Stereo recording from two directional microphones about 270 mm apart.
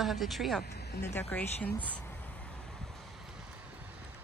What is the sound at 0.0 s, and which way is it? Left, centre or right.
Speech, centre.